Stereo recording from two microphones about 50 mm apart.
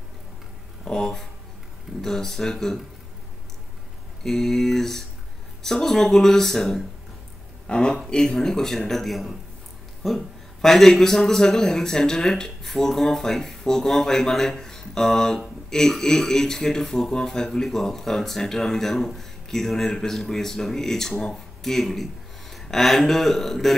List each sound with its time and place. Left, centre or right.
0.8 s speech: centre
4.2 s speech: centre
7.6 s speech: centre